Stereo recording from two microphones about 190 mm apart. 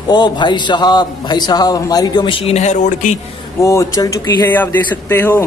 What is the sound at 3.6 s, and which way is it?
A man's voice, 15° left (ahead or behind).